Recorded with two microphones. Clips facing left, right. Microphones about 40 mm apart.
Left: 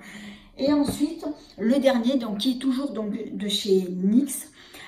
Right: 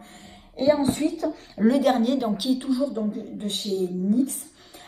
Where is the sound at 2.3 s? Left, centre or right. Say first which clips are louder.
Even; left.